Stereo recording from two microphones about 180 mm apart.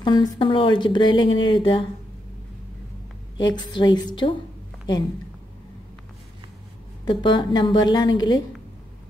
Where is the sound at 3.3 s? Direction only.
25° left (ahead or behind).